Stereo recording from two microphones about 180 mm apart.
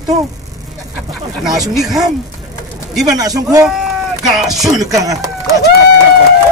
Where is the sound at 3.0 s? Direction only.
20° right (ahead or behind).